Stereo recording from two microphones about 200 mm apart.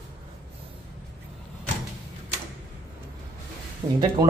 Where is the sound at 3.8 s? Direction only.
35° right (ahead or behind).